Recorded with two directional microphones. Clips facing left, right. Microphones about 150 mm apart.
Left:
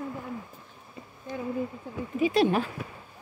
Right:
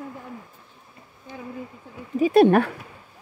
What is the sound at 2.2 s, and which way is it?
Speech, 55° right (ahead or behind).